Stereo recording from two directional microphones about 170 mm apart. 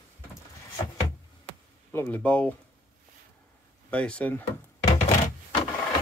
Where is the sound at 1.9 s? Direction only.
10° left (ahead or behind).